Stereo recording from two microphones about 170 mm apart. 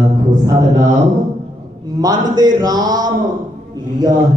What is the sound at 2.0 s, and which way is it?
A woman's voice, 20° right (ahead or behind).